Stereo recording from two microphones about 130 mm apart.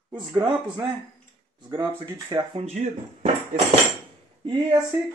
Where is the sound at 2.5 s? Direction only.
50° right (ahead or behind).